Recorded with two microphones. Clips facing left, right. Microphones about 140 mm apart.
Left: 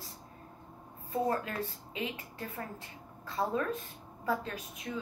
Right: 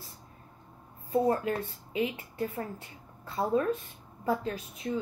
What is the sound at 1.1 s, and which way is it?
A woman's voice, 25° right (ahead or behind).